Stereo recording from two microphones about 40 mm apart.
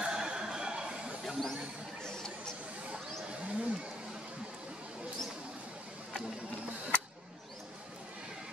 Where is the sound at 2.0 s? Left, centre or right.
Centre.